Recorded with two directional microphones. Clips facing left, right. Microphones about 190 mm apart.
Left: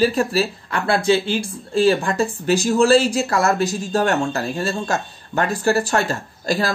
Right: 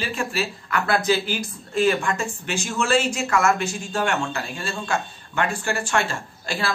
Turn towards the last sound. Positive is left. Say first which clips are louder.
# left 7 dB
turn(degrees=40)  # may be behind; listen again after turning